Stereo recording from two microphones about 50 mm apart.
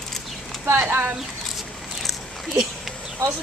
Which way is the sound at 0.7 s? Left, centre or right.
Right.